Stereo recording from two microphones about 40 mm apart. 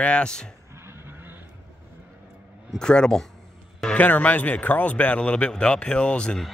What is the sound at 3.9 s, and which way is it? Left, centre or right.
A man's voice, left.